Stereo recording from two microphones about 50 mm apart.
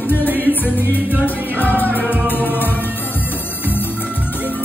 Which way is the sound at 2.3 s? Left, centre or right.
Left.